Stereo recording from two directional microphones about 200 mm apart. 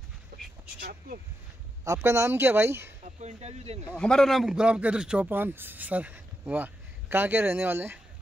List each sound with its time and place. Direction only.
0.3 s a sound: 55° right (ahead or behind)
0.7 s speech: 45° right (ahead or behind)
1.9 s a man's voice: 15° right (ahead or behind)
3.2 s speech: 35° right (ahead or behind)
3.9 s a man's voice: 5° left (ahead or behind)